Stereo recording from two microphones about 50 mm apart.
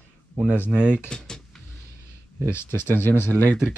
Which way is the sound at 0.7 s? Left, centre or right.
Centre.